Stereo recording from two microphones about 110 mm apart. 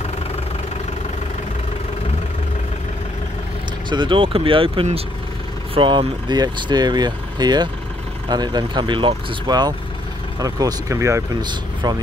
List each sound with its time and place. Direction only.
3.9 s speech: 50° right (ahead or behind); by 11.2 s 30° right (ahead or behind)
11.4 s speech: 40° right (ahead or behind)